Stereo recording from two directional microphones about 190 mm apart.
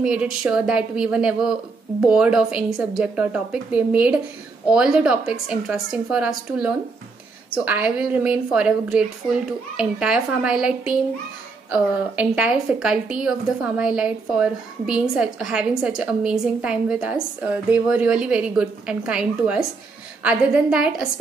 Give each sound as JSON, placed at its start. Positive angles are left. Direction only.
{"t": 0.0, "sound": "a woman's voice", "side_deg": -5}